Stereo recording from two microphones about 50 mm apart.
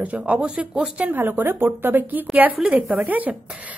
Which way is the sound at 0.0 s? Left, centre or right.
Right.